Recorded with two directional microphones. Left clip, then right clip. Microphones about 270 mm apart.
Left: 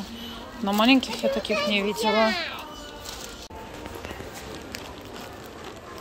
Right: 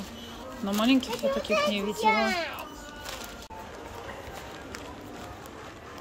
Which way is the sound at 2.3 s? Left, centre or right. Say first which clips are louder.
Left 1 dB; right.